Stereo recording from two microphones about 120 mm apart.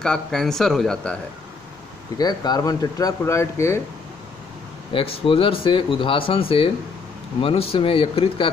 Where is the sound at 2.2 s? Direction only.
35° left (ahead or behind).